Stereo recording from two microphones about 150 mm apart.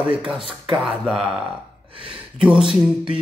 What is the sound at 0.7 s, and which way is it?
Speech, 5° right (ahead or behind).